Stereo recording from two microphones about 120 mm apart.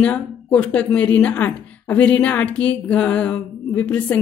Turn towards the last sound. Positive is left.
turn(degrees=10)  # may be behind; listen again after turning